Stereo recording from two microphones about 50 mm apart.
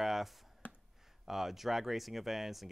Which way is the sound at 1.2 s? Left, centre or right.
Centre.